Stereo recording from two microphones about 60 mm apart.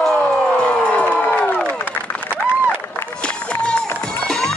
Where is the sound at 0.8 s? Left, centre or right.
Left.